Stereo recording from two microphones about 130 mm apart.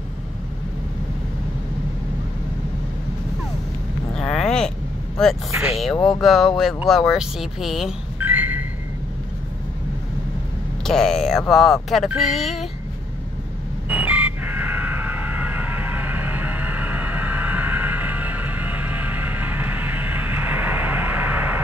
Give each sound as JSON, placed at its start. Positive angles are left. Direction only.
{"t": 4.1, "sound": "vehicle", "side_deg": 5}
{"t": 5.5, "sound": "speech", "side_deg": -15}
{"t": 5.8, "sound": "speech", "side_deg": 0}
{"t": 8.2, "sound": "a sound", "side_deg": -15}
{"t": 10.9, "sound": "speech", "side_deg": 5}
{"t": 13.8, "sound": "vehicle", "side_deg": -10}